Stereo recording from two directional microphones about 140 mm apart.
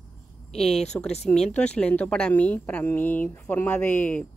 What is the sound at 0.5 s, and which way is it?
Speech, 45° left (ahead or behind).